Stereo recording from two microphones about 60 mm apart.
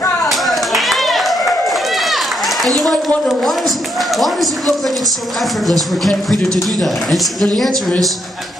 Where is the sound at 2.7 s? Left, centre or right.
Centre.